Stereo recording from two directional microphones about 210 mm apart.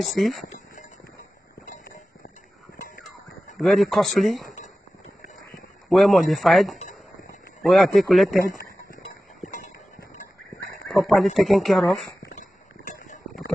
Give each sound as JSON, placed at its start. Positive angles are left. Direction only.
{"t": 0.0, "sound": "speech", "side_deg": 0}
{"t": 1.7, "sound": "a sound", "side_deg": 40}
{"t": 3.5, "sound": "speech", "side_deg": 0}
{"t": 5.9, "sound": "speech", "side_deg": 0}
{"t": 9.5, "sound": "a sound", "side_deg": 35}
{"t": 10.9, "sound": "speech", "side_deg": 0}